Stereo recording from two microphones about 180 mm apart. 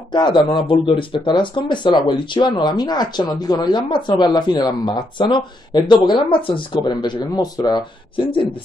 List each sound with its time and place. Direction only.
0.1 s speech: 25° left (ahead or behind)